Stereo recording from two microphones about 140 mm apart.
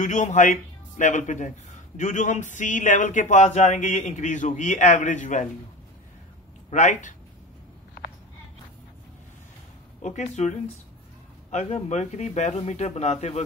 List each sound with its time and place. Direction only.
0.0 s speech: 60° left (ahead or behind)
6.7 s speech: 60° left (ahead or behind)
10.0 s speech: 55° left (ahead or behind)
11.5 s a man's voice: 55° left (ahead or behind)